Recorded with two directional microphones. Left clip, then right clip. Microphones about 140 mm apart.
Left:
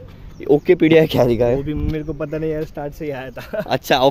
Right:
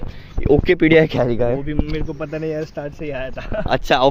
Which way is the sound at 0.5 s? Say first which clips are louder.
Left 1 dB; 25° left (ahead or behind).